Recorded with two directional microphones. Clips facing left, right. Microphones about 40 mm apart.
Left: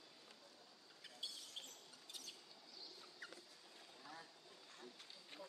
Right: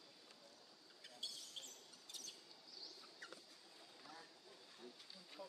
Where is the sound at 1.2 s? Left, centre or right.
Centre.